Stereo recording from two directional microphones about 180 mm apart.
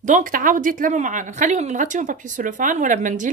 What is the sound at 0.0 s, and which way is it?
A woman's voice, 45° right (ahead or behind).